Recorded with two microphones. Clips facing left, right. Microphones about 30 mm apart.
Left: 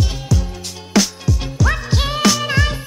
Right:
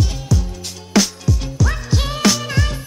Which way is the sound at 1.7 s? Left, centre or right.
Centre.